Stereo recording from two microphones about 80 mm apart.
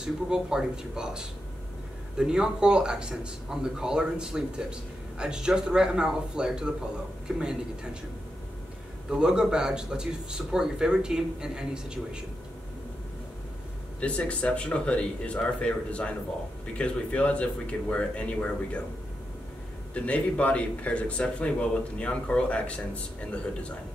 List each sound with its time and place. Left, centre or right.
0.0 s speech: centre
9.1 s speech: centre
14.0 s speech: centre
19.9 s speech: centre